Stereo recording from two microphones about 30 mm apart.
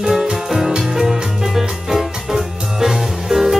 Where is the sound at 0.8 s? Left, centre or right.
Centre.